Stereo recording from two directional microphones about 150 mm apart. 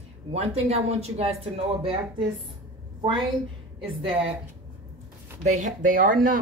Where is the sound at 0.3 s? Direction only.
45° right (ahead or behind).